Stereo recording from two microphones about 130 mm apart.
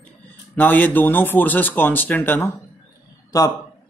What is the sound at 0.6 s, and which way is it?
Speech, 15° left (ahead or behind).